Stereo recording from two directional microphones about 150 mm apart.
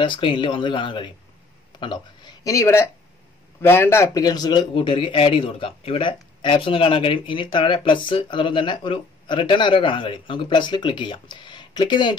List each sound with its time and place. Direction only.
0.0 s a man's voice: 35° left (ahead or behind)